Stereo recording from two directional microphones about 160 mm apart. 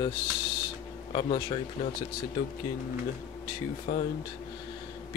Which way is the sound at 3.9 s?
70° left (ahead or behind).